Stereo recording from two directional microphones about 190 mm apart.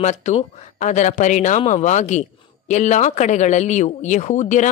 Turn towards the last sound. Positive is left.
turn(degrees=40)  # may be behind; listen again after turning